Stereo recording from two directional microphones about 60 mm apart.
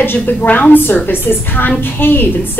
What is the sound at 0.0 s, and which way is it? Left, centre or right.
A woman's voice, left.